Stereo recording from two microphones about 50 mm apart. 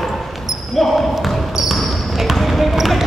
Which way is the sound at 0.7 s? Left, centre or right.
Centre.